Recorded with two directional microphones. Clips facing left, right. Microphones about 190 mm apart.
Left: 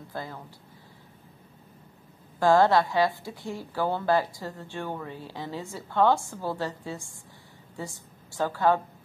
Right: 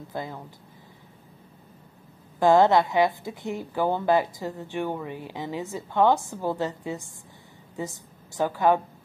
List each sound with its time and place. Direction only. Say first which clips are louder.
0.1 s speech: right 3 dB; 20° right (ahead or behind)
2.3 s a woman's voice: right 2 dB; 20° right (ahead or behind)